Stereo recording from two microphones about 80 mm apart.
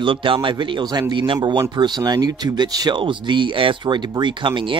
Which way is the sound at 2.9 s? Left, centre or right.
Right.